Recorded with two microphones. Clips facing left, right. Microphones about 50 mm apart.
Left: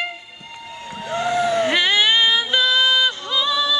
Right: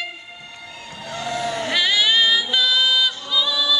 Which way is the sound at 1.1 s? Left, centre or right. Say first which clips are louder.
Left 6 dB; left.